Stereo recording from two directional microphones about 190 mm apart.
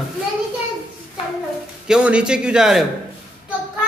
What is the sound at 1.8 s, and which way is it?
Speech, 5° right (ahead or behind).